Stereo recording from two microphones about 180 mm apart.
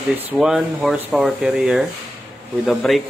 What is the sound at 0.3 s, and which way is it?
Speech, 5° right (ahead or behind).